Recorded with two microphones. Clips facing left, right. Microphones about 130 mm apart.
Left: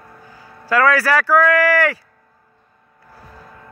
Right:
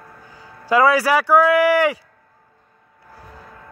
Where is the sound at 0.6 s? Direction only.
20° right (ahead or behind).